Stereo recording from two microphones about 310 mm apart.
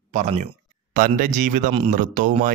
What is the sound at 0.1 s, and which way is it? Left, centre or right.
A man's voice, right.